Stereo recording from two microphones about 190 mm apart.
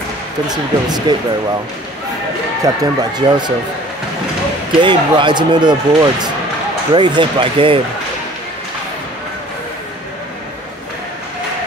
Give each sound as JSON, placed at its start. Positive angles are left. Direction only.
{"t": 0.5, "sound": "speech", "side_deg": -20}
{"t": 2.6, "sound": "speech", "side_deg": -20}
{"t": 4.8, "sound": "speech", "side_deg": -25}